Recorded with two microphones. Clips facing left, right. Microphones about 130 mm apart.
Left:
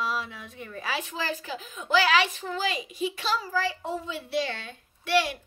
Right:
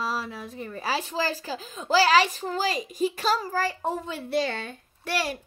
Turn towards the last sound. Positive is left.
turn(degrees=-40)  # may be behind; listen again after turning